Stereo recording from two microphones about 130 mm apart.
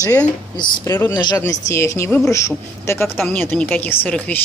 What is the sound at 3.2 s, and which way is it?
Speech, 10° left (ahead or behind).